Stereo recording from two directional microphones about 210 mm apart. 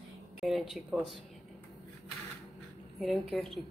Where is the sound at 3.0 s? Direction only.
Centre (ahead or behind).